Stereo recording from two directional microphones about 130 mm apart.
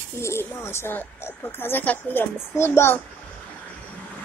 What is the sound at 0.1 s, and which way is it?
Speech, 20° left (ahead or behind).